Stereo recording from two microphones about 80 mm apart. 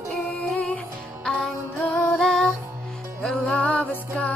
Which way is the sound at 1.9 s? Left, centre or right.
Centre.